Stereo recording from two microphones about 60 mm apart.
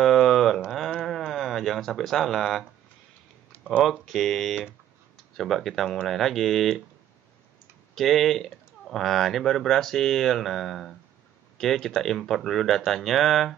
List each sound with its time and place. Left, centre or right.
0.0 s a sound: centre
1.0 s music: centre
3.5 s typing: left
4.0 s speech: centre
7.9 s speech: centre